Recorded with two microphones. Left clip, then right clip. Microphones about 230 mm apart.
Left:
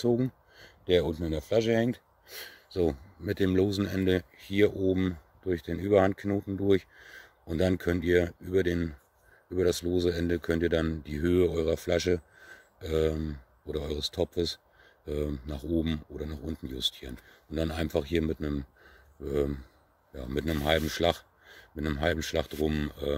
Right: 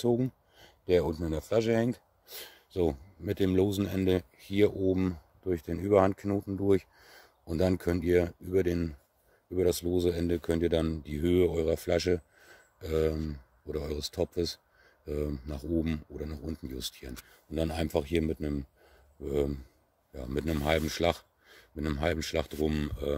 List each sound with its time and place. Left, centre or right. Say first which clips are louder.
0.0 s speech: left 1 dB; centre